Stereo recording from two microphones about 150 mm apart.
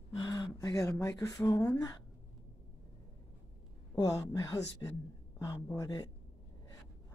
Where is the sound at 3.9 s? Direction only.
25° left (ahead or behind).